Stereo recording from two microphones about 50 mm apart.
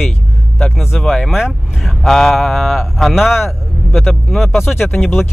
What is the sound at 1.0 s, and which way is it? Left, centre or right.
Speech, centre.